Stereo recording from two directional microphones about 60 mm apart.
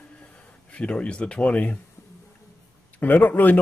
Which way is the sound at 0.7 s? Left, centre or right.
Centre.